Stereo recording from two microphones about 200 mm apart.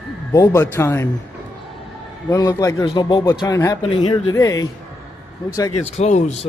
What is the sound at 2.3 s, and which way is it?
Speech, 15° left (ahead or behind).